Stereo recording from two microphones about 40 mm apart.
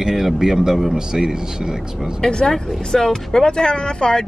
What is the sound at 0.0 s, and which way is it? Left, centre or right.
Speech, centre.